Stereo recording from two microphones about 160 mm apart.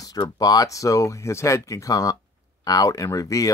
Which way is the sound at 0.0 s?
25° left (ahead or behind).